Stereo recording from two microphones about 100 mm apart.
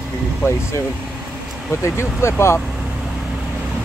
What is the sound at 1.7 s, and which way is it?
Speech, 25° left (ahead or behind).